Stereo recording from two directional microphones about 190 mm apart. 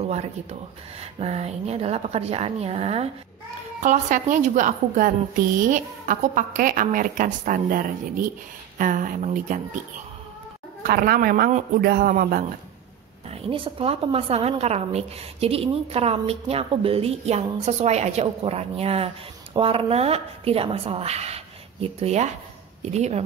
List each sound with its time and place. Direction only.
0.0 s a woman's voice: 35° right (ahead or behind)
10.8 s a woman's voice: 50° right (ahead or behind)
13.3 s a woman's voice: 30° right (ahead or behind)